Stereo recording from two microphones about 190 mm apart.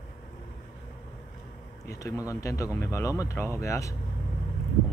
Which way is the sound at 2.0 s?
15° left (ahead or behind).